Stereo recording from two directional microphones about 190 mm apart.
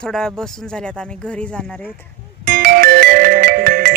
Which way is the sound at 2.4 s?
50° right (ahead or behind).